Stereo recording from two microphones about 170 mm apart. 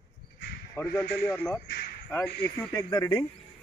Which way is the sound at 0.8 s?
5° left (ahead or behind).